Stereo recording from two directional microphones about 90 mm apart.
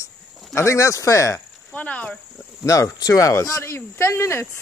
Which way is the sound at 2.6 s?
35° left (ahead or behind).